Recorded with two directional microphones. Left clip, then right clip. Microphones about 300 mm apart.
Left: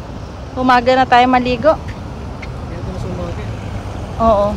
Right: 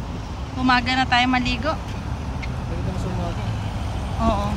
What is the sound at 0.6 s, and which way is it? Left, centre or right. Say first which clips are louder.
Speech: left 8 dB; centre.